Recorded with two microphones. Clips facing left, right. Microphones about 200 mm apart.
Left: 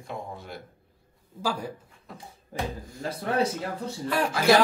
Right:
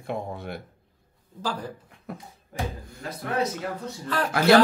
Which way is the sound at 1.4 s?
10° left (ahead or behind).